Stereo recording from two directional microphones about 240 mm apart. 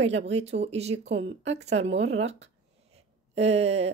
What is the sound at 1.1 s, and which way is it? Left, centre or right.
Speech, right.